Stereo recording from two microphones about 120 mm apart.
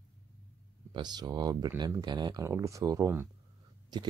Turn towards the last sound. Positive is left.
turn(degrees=-35)  # may be behind; listen again after turning